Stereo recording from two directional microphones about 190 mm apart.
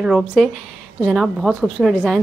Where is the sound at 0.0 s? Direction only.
5° right (ahead or behind).